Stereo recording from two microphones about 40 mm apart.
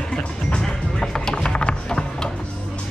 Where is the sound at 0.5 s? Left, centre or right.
Centre.